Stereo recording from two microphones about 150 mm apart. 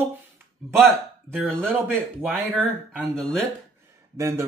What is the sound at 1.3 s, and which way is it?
Speech, 15° right (ahead or behind).